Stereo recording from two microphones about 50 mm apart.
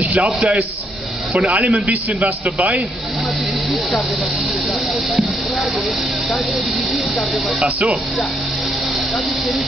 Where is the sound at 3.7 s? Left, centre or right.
Centre.